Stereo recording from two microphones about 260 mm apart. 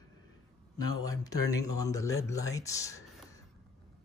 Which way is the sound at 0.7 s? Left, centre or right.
Centre.